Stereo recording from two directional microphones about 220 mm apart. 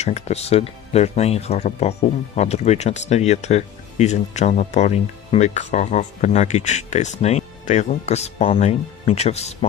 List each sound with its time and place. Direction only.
0.0 s speech: 30° left (ahead or behind)